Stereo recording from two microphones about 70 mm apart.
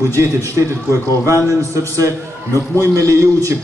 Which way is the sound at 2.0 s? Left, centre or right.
Right.